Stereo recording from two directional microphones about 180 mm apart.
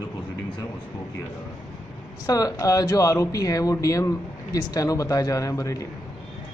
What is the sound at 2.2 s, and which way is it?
Speech, 20° left (ahead or behind).